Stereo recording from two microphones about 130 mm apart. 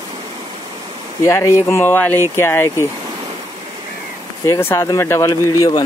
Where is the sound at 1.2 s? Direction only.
20° left (ahead or behind).